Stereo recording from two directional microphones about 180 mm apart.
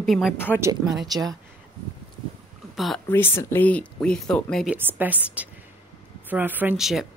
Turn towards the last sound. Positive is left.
turn(degrees=0)  # may be behind; listen again after turning